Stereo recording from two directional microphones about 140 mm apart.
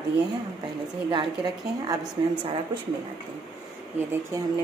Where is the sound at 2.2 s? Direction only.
30° right (ahead or behind).